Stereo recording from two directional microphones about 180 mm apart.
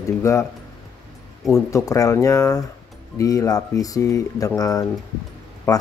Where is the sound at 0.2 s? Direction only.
15° left (ahead or behind).